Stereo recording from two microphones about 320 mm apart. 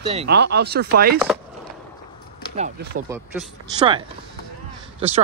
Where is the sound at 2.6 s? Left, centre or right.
Right.